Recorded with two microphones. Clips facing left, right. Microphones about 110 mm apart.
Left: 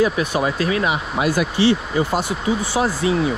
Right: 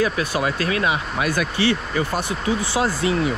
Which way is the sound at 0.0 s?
25° left (ahead or behind).